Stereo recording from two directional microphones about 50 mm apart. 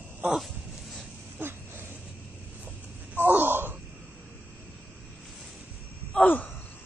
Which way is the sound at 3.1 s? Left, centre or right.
Right.